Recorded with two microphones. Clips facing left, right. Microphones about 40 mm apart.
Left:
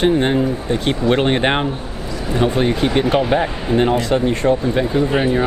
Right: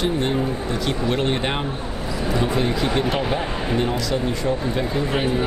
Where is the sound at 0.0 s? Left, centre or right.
Left.